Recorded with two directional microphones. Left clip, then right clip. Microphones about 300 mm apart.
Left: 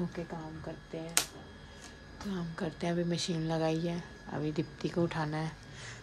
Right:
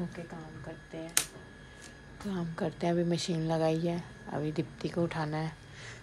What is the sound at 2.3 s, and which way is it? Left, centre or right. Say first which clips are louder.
Speech: right 3 dB; centre.